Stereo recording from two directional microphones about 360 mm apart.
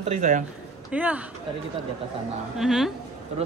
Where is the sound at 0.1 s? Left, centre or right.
Right.